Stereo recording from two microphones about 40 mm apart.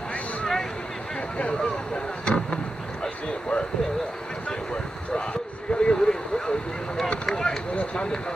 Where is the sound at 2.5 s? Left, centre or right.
Left.